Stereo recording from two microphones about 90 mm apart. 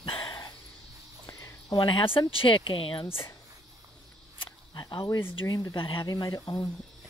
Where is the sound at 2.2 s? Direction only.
80° left.